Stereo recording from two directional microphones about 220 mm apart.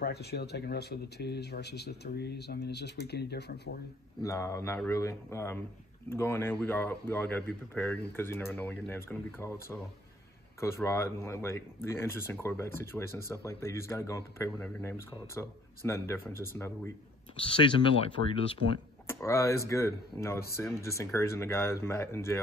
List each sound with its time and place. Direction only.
0.0 s speech: 45° left (ahead or behind)
4.2 s speech: 15° left (ahead or behind)
17.4 s speech: 25° left (ahead or behind)
18.6 s speech: 60° right (ahead or behind)
19.2 s speech: 15° left (ahead or behind)